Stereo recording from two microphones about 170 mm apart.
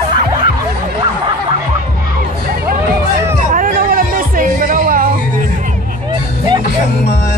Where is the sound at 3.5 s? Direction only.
55° right (ahead or behind).